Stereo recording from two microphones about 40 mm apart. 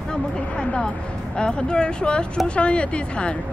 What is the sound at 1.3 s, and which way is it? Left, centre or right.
A woman's voice, left.